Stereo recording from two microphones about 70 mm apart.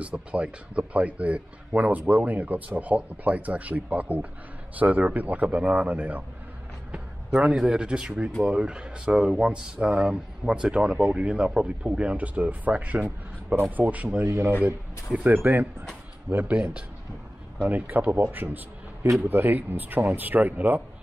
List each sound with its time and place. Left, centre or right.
0.0 s speech: centre
14.2 s speech: right
15.1 s speech: right
17.6 s speech: right